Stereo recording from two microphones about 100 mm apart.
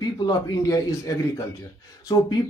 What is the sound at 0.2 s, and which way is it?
A man's voice, 40° left (ahead or behind).